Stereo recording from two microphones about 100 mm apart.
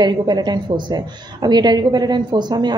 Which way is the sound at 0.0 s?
45° right (ahead or behind).